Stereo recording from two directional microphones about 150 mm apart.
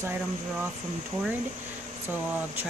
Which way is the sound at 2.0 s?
10° right (ahead or behind).